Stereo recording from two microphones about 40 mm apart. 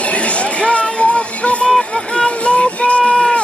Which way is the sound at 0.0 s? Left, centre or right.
Left.